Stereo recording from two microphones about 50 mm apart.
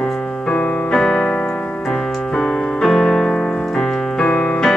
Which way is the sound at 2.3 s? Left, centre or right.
Centre.